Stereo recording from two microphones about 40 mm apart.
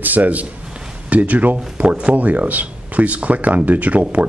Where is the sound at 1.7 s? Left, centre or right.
Right.